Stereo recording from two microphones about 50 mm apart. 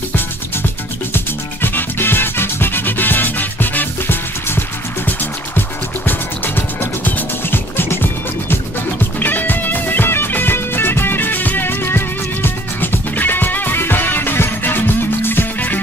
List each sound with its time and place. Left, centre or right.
1.1 s music: left